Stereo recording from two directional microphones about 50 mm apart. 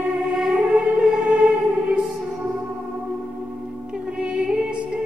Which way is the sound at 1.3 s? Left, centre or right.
Centre.